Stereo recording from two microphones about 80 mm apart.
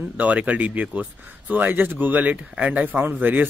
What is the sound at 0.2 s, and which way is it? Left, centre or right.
Speech, centre.